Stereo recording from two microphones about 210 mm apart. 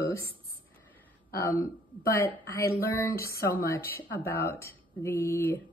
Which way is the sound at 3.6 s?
45° left (ahead or behind).